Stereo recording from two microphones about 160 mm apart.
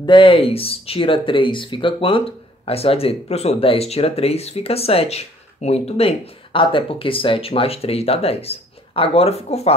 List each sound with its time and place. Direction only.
0.0 s speech: 30° left (ahead or behind)